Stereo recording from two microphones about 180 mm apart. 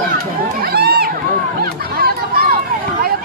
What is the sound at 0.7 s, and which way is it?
Run, 60° right (ahead or behind).